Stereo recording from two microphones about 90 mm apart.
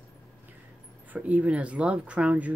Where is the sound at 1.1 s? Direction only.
15° right (ahead or behind).